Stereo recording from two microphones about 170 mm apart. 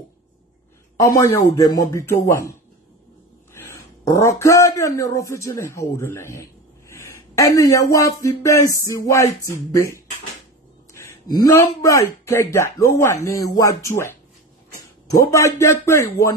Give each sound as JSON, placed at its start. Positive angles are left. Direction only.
{"t": 0.9, "sound": "a man's voice", "side_deg": 20}
{"t": 3.5, "sound": "speech", "side_deg": 20}
{"t": 15.3, "sound": "speech", "side_deg": 15}